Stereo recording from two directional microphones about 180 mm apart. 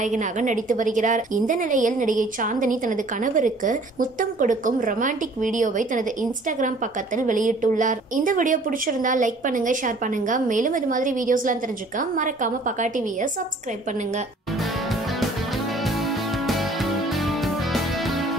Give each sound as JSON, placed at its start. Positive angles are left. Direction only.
{"t": 0.0, "sound": "a woman's voice", "side_deg": -45}
{"t": 15.8, "sound": "music", "side_deg": 0}